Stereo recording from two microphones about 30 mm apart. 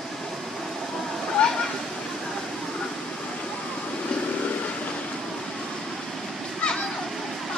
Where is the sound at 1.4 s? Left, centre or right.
Left.